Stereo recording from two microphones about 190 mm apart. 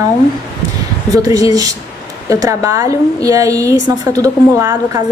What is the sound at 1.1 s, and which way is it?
A woman's voice, 20° right (ahead or behind).